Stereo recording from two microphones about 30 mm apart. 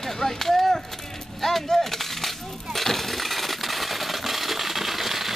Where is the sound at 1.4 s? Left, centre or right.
Centre.